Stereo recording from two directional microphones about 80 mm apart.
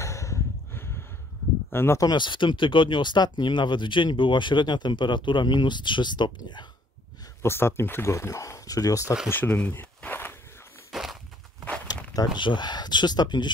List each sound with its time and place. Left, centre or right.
0.0 s a sound: left
1.7 s speech: left
2.0 s speech: left
7.4 s speech: left
9.3 s speech: centre
10.9 s walk: centre
11.9 s a sound: left
12.4 s speech: left